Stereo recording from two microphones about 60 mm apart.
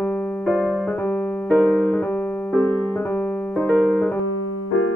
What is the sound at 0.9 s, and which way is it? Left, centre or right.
Keyboard, left.